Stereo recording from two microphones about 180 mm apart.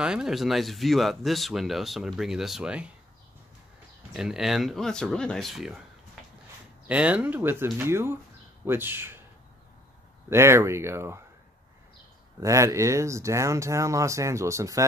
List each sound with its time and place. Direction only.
0.0 s speech: 5° right (ahead or behind)
4.1 s speech: 5° right (ahead or behind)
6.9 s speech: 5° right (ahead or behind)
10.3 s speech: 15° right (ahead or behind)
12.4 s speech: 15° right (ahead or behind)